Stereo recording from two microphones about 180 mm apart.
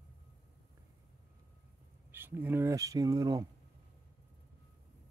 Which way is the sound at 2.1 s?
10° right (ahead or behind).